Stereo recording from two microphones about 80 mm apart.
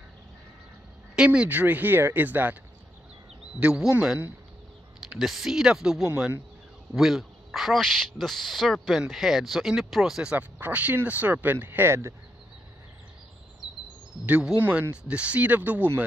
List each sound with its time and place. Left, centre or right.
1.1 s speech: centre
3.5 s speech: centre
10.3 s speech: centre
14.6 s speech: centre